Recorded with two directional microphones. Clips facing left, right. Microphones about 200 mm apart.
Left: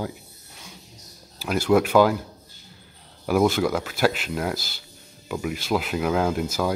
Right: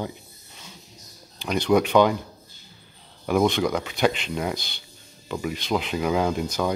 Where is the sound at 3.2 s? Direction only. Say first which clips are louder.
Left 1 dB; 5° left (ahead or behind).